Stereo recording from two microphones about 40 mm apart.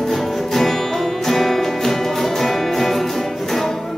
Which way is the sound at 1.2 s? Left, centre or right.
Centre.